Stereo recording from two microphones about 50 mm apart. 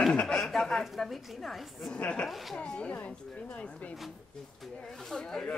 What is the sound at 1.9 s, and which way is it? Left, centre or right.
Speech, centre.